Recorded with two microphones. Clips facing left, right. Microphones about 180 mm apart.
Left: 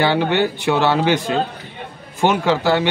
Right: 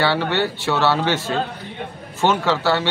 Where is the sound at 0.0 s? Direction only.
15° left (ahead or behind).